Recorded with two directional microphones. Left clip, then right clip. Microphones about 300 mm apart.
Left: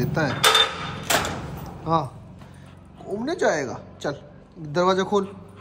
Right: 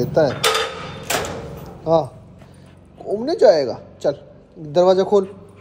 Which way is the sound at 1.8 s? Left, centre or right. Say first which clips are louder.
Right 6 dB; left.